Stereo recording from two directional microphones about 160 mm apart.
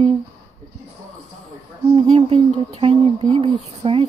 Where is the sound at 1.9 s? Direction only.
35° right (ahead or behind).